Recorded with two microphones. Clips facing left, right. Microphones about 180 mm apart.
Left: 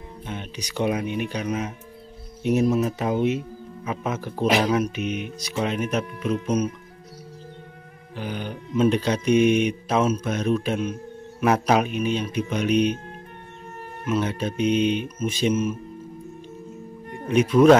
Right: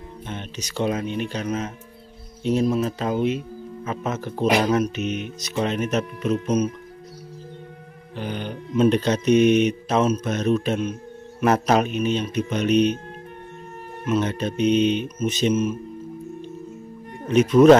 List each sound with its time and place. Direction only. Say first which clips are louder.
0.3 s speech: even; 10° left (ahead or behind)
3.9 s speech: even; 10° left (ahead or behind)
8.2 s speech: right 1 dB; 5° left (ahead or behind)
14.0 s speech: right 2 dB; 5° left (ahead or behind)
17.3 s speech: right 2 dB; 5° left (ahead or behind)